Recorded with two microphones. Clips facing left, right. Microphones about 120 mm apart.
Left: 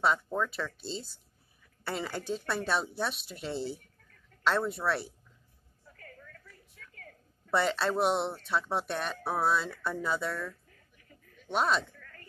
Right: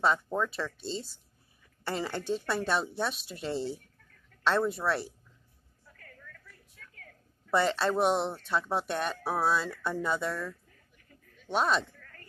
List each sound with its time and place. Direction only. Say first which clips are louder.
0.0 s speech: right 1 dB; centre (ahead or behind)
7.5 s speech: right 2 dB; centre (ahead or behind)
11.5 s speech: right 1 dB; centre (ahead or behind)
12.0 s a sound: left 1 dB; 40° right (ahead or behind)